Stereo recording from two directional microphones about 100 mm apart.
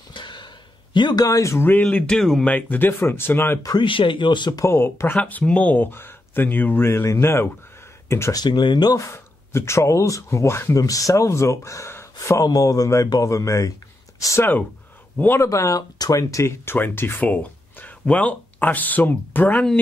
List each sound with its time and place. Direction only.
0.1 s a sound: 50° left (ahead or behind)
0.9 s speech: 45° left (ahead or behind); by 2.4 s 5° left (ahead or behind)
2.4 s speech: 15° left (ahead or behind)
3.8 s speech: 60° left (ahead or behind)
4.6 s speech: 25° left (ahead or behind)
5.1 s speech: 10° left (ahead or behind)
8.4 s speech: 50° left (ahead or behind)
8.9 s speech: 30° left (ahead or behind)
12.4 s speech: 35° left (ahead or behind); by 19.6 s 20° left (ahead or behind)